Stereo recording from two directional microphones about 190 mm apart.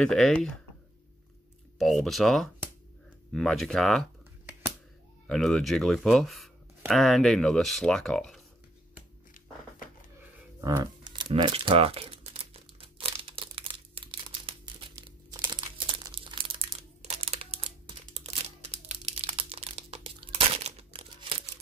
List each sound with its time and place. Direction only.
0.0 s speech: 5° left (ahead or behind)
1.8 s speech: centre (ahead or behind)
5.2 s speech: centre (ahead or behind)
10.2 s crumpling: 15° right (ahead or behind)